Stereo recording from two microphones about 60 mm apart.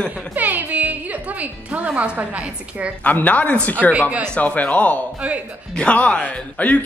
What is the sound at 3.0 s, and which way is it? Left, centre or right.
Speech, left.